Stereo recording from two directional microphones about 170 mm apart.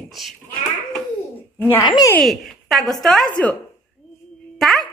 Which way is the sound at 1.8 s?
25° left (ahead or behind).